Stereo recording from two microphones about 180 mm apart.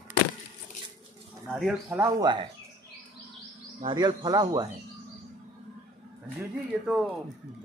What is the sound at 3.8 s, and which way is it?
Speech, 25° right (ahead or behind).